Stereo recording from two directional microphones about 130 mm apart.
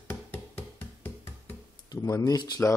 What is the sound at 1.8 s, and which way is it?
Speech, 25° left (ahead or behind).